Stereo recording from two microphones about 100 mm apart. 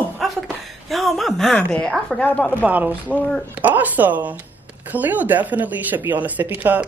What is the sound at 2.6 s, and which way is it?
Speech, 15° right (ahead or behind).